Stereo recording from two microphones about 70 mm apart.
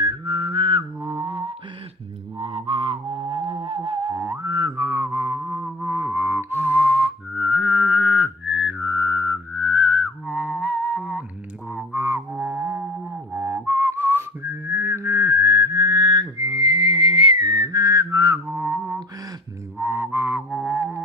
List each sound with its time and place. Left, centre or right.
0.0 s mantra: right
3.2 s music: right
5.4 s music: centre
5.9 s music: right; by 11.0 s centre
11.0 s a sound: centre
11.9 s music: right
12.8 s music: centre
13.7 s whistling: right
18.5 s a sound: right
19.8 s a sound: right
20.5 s music: right